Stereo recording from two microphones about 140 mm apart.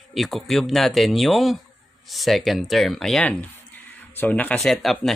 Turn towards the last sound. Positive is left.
turn(degrees=0)  # may be behind; listen again after turning